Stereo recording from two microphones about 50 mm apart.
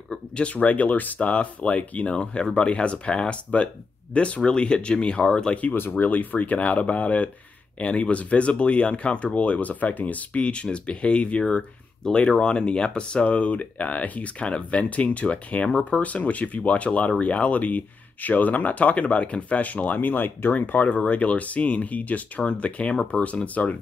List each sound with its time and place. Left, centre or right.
0.4 s speech: left
5.8 s speech: left